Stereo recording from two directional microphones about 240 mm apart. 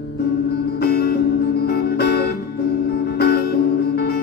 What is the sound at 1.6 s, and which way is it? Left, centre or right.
Music, left.